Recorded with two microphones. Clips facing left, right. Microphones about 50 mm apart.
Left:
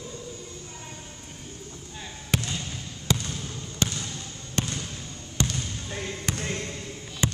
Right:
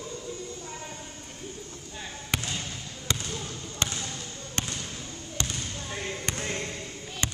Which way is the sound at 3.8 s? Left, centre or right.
Centre.